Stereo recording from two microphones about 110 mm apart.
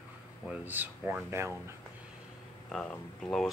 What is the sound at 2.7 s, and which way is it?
Speech, 10° left (ahead or behind).